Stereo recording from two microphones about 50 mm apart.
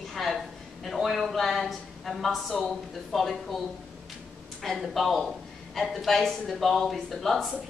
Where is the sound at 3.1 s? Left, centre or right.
Centre.